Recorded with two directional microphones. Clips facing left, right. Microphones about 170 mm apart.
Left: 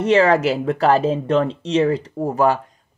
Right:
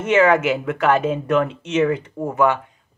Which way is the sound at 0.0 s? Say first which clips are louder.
Left 1 dB; 35° left (ahead or behind).